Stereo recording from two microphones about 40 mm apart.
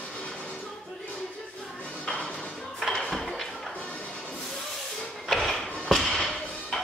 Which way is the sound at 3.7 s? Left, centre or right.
Left.